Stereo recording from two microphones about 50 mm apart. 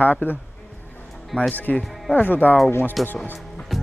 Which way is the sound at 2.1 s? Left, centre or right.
Left.